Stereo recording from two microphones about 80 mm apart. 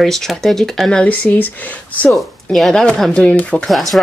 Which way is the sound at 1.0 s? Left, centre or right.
Centre.